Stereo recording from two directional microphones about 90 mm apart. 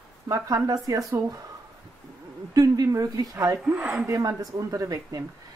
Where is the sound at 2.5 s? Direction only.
40° right (ahead or behind).